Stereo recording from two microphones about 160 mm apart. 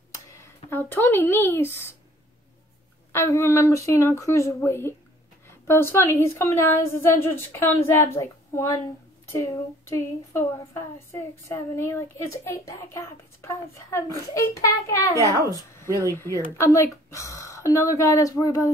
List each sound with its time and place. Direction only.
0.7 s a woman's voice: 15° left (ahead or behind)
3.1 s a woman's voice: 15° left (ahead or behind)